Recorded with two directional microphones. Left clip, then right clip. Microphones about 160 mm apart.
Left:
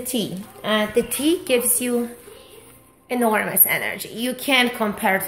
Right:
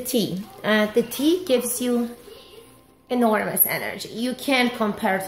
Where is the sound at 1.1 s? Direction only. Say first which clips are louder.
Left 1 dB; 25° right (ahead or behind).